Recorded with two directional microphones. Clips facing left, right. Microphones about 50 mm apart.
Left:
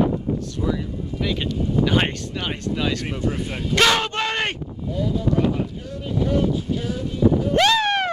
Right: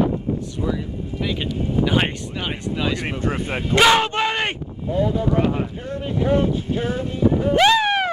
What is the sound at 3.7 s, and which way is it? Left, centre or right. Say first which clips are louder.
Speech: right 3 dB; centre.